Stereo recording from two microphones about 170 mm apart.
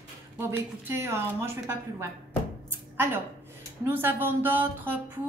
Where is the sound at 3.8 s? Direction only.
10° right (ahead or behind).